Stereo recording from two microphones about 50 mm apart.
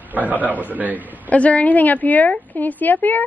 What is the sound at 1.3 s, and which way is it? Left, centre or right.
A woman's voice, left.